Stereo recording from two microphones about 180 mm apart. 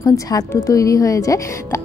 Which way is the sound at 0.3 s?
20° left (ahead or behind).